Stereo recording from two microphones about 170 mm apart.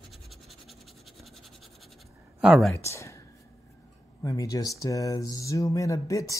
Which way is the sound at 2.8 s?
15° left (ahead or behind).